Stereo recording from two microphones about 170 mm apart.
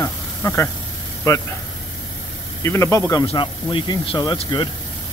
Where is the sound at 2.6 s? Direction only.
15° left (ahead or behind).